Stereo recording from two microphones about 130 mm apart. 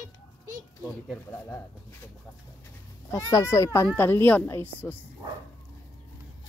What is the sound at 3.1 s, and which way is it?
A woman's voice, 25° left (ahead or behind).